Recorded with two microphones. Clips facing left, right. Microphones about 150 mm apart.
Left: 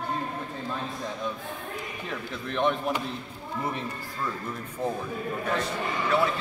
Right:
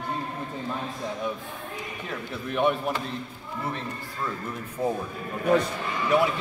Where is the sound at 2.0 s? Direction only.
5° right (ahead or behind).